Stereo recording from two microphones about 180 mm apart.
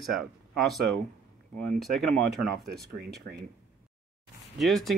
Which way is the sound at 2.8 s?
65° right (ahead or behind).